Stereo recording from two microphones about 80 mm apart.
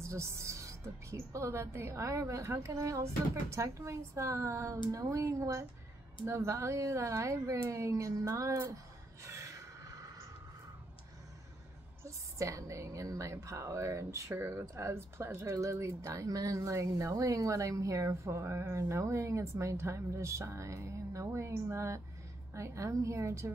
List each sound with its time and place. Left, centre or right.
0.0 s a woman's voice: right
8.6 s a sound: right
12.0 s a woman's voice: right